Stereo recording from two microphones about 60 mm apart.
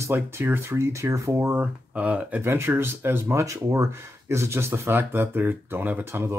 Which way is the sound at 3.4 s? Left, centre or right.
Right.